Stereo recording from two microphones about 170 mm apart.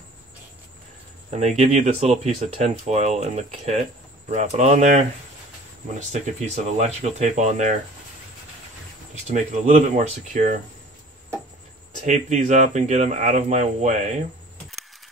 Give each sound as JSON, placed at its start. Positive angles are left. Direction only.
{"t": 1.3, "sound": "speech", "side_deg": -40}
{"t": 9.3, "sound": "speech", "side_deg": -45}
{"t": 12.1, "sound": "speech", "side_deg": -45}